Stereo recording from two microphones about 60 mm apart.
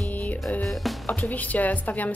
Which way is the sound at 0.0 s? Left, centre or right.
Left.